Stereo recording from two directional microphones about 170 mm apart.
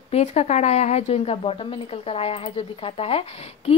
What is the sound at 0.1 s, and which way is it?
A woman's voice, 40° left (ahead or behind).